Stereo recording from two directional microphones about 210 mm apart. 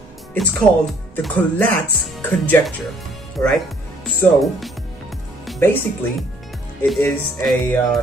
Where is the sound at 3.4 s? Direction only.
15° left (ahead or behind).